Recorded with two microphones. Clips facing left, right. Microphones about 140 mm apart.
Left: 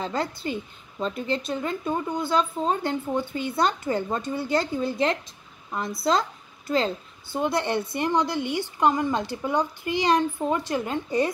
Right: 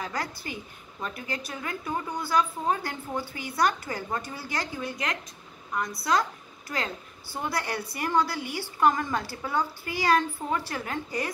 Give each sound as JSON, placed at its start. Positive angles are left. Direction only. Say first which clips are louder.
{"t": 0.0, "sound": "a woman's voice", "louder": "left 5 dB", "side_deg": 25}